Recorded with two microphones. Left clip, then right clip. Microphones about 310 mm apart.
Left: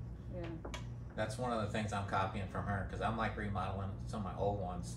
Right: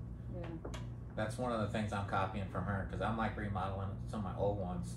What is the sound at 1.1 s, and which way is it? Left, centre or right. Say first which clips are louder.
Speech: even; left.